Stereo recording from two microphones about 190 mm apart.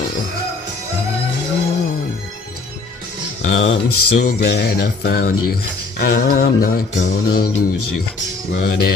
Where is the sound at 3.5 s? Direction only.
85° left.